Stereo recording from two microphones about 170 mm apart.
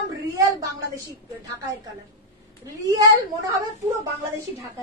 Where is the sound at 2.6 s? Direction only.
20° right (ahead or behind).